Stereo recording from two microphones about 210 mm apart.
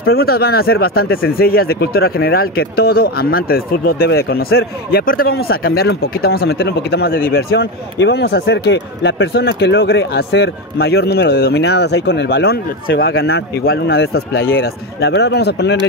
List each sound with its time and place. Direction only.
0.0 s speech: 45° left (ahead or behind)